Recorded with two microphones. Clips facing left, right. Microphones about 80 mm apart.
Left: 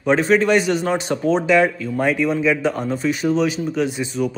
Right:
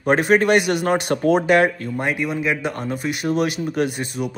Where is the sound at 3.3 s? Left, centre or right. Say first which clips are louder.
Left 1 dB; right.